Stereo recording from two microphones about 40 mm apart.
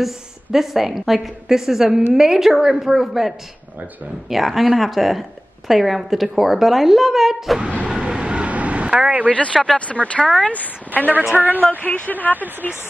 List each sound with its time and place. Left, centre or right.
0.0 s a woman's voice: centre
7.6 s vehicle: right
9.0 s speech: right
9.3 s speech: left
11.3 s a woman's voice: right
11.8 s speech: left
12.6 s speech: left